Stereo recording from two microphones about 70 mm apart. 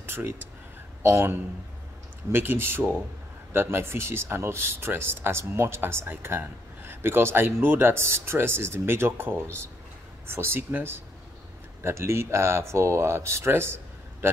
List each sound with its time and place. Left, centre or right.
0.0 s speech: right
2.3 s speech: right